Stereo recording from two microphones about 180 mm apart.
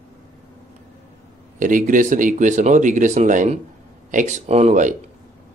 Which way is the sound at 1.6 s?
45° right (ahead or behind).